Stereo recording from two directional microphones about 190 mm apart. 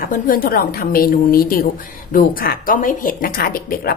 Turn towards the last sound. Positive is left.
turn(degrees=50)  # may be behind; listen again after turning